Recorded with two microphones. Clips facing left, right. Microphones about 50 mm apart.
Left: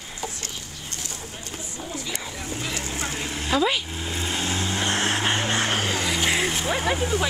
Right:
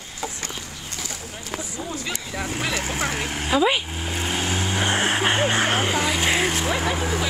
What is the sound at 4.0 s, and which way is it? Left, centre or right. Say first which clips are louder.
Vehicle: right 2 dB; right.